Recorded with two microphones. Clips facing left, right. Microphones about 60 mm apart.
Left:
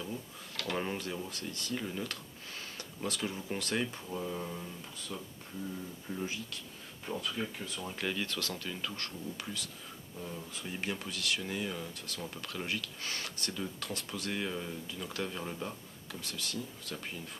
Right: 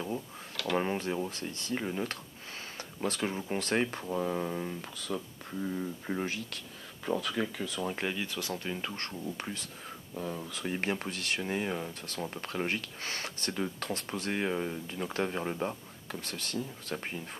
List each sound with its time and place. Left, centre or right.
0.9 s speech: right
3.9 s speech: right
4.9 s speech: right
5.6 s speech: right
7.2 s speech: right
8.0 s speech: centre; by 9.7 s right
10.1 s speech: right
10.6 s speech: right